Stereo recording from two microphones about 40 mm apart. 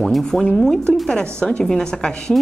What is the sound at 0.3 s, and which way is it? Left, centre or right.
Speech, centre.